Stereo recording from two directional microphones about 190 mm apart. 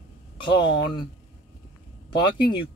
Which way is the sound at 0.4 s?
25° left (ahead or behind).